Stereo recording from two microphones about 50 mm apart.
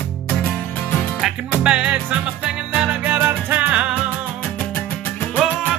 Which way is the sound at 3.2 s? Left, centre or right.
Right.